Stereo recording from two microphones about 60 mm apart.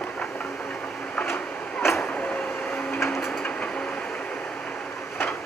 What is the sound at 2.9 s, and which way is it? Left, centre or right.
Printer, left.